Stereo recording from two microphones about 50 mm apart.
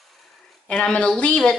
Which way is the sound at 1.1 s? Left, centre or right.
Left.